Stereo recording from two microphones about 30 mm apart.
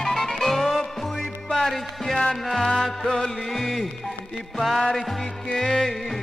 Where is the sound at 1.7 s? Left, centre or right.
Centre.